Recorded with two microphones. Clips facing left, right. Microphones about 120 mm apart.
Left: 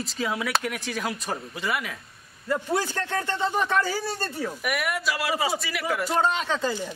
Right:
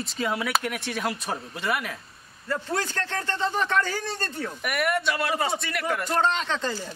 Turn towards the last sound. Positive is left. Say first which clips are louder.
# left 2 dB
turn(degrees=10)  # may be behind; listen again after turning